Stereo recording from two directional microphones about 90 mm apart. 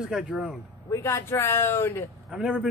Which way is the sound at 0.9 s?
30° left (ahead or behind).